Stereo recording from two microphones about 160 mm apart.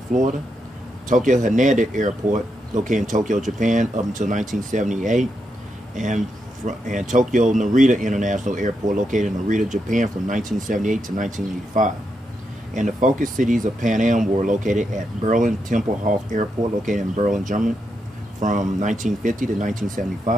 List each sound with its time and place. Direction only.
0.1 s speech: 55° right (ahead or behind)
5.9 s speech: 50° right (ahead or behind)